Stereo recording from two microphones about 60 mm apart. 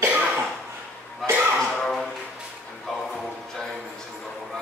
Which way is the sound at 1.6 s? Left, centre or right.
Centre.